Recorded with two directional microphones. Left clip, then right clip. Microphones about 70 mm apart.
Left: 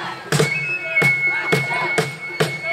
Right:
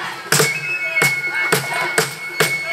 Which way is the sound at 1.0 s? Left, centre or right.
Centre.